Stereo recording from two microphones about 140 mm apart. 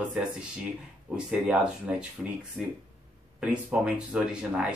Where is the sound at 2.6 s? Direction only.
15° right (ahead or behind).